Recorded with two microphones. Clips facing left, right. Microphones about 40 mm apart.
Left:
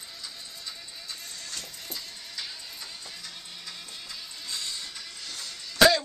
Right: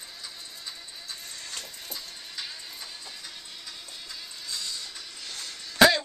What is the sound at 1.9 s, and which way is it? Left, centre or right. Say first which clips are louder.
Vehicle: even; centre.